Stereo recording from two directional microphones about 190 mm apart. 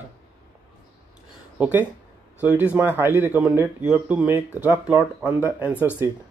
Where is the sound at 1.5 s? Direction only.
10° right (ahead or behind).